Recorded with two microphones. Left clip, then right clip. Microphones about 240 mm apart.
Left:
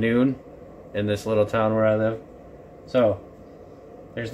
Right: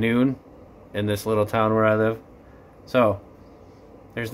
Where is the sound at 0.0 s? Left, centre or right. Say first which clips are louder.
Even; centre.